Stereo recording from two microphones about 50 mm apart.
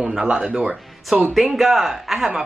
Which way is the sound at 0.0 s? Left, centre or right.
Centre.